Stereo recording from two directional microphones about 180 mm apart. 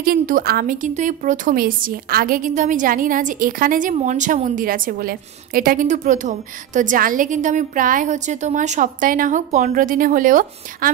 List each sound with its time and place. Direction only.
0.0 s a woman's voice: 55° right (ahead or behind)